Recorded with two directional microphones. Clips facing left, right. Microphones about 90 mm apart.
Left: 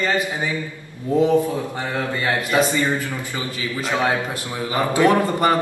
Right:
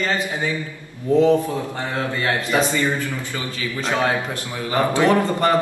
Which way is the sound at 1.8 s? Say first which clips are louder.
Even; 15° left (ahead or behind).